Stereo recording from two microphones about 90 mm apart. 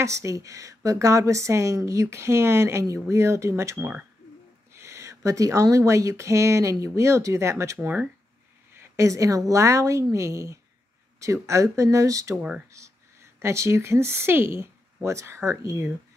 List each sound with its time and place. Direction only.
0.0 s a woman's voice: 35° right (ahead or behind)
12.4 s speech: 10° right (ahead or behind)
12.7 s a woman's voice: 35° right (ahead or behind)